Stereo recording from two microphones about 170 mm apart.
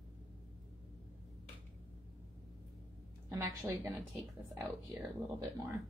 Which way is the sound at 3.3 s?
20° right (ahead or behind).